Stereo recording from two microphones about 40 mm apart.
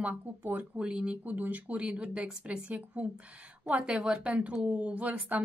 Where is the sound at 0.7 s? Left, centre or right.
Right.